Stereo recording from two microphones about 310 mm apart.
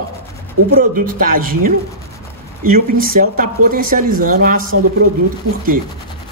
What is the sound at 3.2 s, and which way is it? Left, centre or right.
Speech, right.